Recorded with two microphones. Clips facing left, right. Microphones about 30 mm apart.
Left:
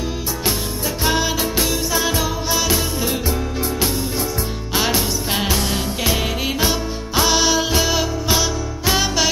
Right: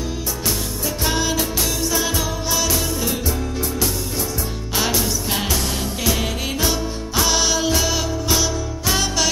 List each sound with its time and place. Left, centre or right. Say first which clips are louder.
1.0 s music: left 2 dB; centre
4.9 s music: left 1 dB; left
6.6 s music: left 1 dB; centre